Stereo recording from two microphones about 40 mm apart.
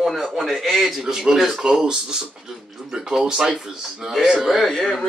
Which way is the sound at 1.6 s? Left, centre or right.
Centre.